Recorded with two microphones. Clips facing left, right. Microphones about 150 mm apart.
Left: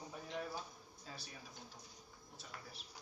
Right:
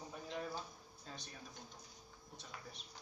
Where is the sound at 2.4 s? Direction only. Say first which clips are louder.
Even; 5° left (ahead or behind).